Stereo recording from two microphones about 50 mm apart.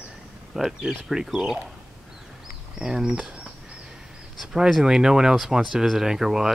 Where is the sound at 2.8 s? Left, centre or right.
Centre.